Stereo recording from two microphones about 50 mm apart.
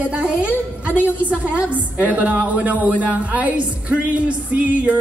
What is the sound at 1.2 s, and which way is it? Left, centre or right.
Speech, right.